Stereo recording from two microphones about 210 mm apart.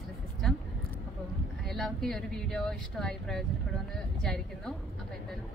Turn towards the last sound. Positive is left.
turn(degrees=0)  # may be behind; listen again after turning